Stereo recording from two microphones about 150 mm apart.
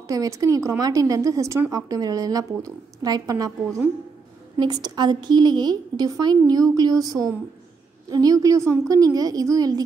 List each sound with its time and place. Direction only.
0.1 s a woman's voice: 20° right (ahead or behind)